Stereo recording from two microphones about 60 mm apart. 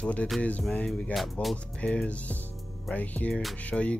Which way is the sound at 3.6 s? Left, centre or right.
Left.